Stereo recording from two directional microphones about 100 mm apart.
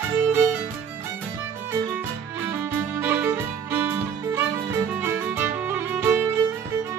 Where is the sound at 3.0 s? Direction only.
20° right (ahead or behind).